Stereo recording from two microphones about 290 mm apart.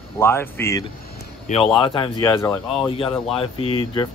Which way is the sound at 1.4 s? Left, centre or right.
Left.